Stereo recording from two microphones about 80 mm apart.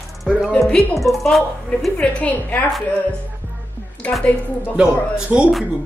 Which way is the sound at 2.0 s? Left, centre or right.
Centre.